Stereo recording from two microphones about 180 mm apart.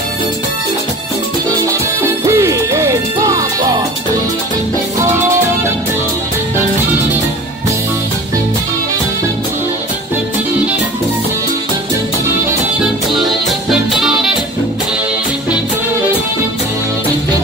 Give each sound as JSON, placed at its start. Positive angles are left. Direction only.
{"t": 2.2, "sound": "music", "side_deg": -15}
{"t": 13.1, "sound": "music", "side_deg": 0}